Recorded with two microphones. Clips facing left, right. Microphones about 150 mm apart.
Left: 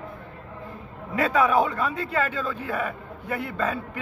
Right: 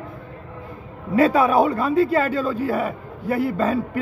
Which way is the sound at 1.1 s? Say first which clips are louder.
Right 5 dB; 35° right (ahead or behind).